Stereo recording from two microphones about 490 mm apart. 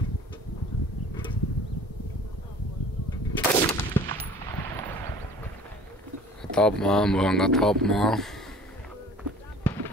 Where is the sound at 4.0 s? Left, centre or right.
Centre.